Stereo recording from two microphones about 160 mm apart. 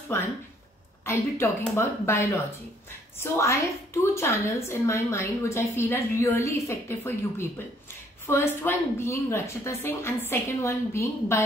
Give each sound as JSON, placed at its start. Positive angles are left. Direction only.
{"t": 1.0, "sound": "a woman's voice", "side_deg": 15}